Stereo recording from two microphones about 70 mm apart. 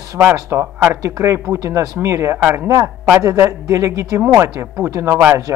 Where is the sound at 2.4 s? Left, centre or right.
Right.